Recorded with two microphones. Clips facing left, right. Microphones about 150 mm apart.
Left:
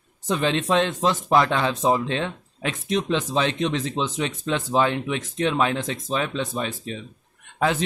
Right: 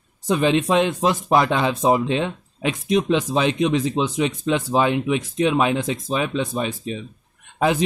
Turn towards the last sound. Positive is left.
turn(degrees=-15)  # may be behind; listen again after turning